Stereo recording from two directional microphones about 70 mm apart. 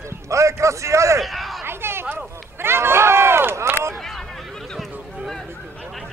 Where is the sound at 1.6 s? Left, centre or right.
Right.